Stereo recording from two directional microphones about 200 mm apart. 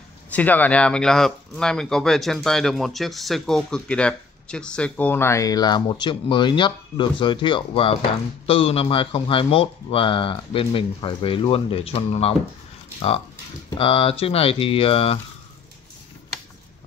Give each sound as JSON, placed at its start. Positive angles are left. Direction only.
{"t": 0.3, "sound": "speech", "side_deg": 10}
{"t": 13.7, "sound": "speech", "side_deg": 25}